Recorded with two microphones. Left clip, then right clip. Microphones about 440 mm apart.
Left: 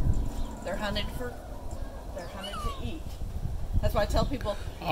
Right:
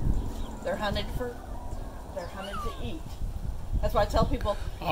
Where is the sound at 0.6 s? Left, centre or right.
Centre.